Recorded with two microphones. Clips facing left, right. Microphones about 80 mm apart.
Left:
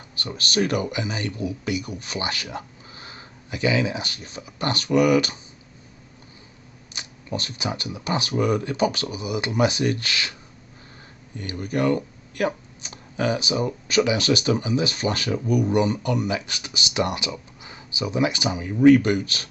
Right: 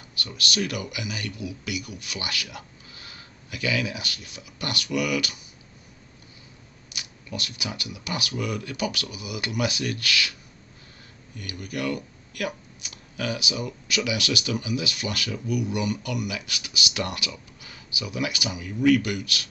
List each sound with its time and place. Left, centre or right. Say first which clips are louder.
0.1 s speech: left 4 dB; left
6.9 s speech: left 6 dB; left
11.3 s speech: left 7 dB; left